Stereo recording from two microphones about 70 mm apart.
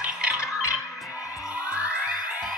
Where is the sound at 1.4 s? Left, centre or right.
Centre.